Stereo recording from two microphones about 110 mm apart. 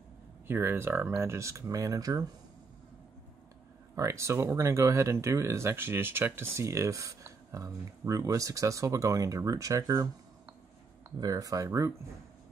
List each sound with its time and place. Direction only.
0.5 s speech: 20° right (ahead or behind)
3.9 s speech: 25° right (ahead or behind)
11.1 s speech: 35° right (ahead or behind)